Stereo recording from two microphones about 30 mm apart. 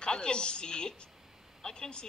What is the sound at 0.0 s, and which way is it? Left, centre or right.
A woman's voice, left.